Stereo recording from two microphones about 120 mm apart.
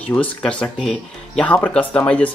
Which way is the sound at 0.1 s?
10° left (ahead or behind).